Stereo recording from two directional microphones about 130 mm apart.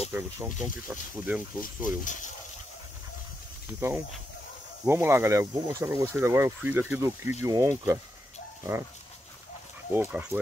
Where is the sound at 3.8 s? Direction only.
20° right (ahead or behind).